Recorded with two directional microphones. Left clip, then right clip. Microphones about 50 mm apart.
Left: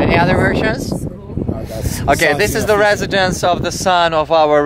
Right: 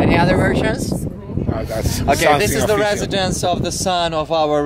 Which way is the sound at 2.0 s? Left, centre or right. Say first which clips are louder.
Left 1 dB; left.